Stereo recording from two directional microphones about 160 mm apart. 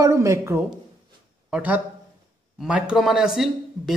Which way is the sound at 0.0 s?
20° right (ahead or behind).